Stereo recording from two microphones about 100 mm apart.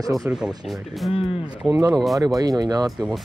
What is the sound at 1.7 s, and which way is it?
Speech, 40° right (ahead or behind).